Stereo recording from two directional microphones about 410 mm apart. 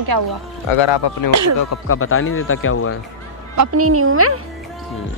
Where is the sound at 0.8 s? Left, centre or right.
Left.